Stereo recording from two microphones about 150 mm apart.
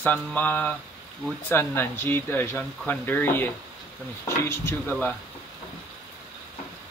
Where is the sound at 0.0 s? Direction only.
10° left (ahead or behind).